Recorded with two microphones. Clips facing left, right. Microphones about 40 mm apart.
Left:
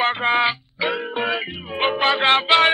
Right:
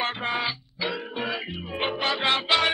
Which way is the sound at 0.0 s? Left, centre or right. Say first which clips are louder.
Left 9 dB; left.